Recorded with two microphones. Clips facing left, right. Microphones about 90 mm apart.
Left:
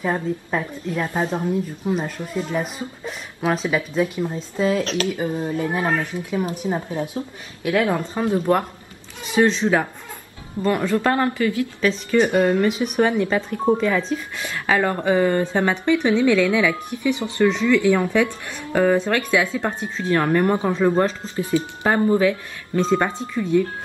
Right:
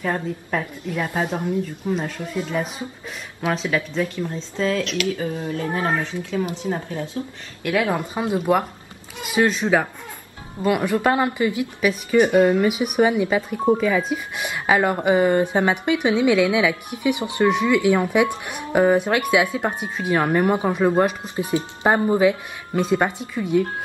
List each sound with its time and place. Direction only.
0.0 s speech: 10° left (ahead or behind)
1.0 s speech: 10° right (ahead or behind)
1.9 s speech: 5° left (ahead or behind)
4.8 s speech: 35° left (ahead or behind)
5.1 s speech: 25° left (ahead or behind)
7.6 s speech: 5° right (ahead or behind)